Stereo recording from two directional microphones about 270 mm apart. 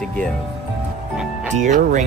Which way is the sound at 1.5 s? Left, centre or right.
Right.